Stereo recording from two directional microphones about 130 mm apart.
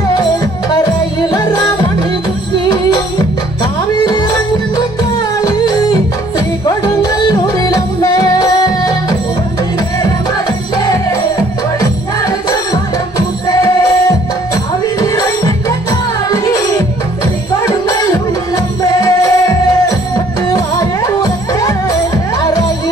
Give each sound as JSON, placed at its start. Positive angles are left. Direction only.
{"t": 0.2, "sound": "music", "side_deg": 30}
{"t": 2.7, "sound": "music", "side_deg": 30}
{"t": 5.4, "sound": "music", "side_deg": 30}
{"t": 11.8, "sound": "music", "side_deg": 30}
{"t": 14.5, "sound": "music", "side_deg": 30}